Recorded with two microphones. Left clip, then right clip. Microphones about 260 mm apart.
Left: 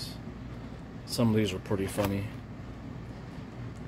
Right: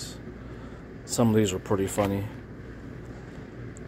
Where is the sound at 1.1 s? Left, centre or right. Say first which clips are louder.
Right 5 dB; centre.